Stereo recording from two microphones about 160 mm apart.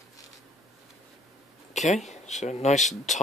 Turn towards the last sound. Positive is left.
turn(degrees=50)  # may be behind; listen again after turning